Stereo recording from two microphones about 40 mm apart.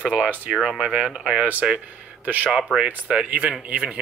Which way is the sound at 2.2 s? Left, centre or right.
Right.